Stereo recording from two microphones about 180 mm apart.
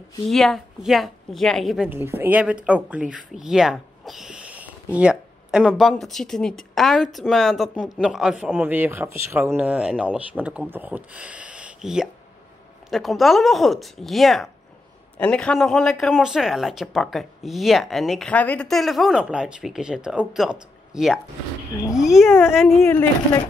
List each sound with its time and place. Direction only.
0.3 s speech: centre (ahead or behind)
1.9 s speech: 10° right (ahead or behind)
22.8 s speech: 10° left (ahead or behind)